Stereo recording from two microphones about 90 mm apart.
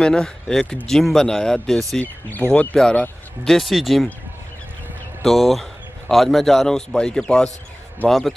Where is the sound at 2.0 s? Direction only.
20° left (ahead or behind); by 4.1 s centre (ahead or behind).